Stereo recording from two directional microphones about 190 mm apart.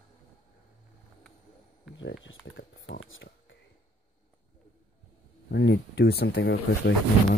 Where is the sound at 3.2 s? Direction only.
55° left (ahead or behind).